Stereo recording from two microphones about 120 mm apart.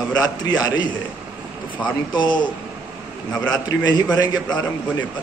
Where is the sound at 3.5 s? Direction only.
35° left (ahead or behind).